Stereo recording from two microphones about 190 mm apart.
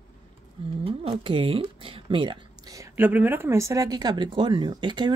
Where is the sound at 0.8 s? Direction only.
30° right (ahead or behind).